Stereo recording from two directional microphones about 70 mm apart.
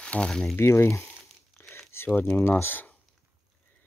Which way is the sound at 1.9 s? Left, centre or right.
Left.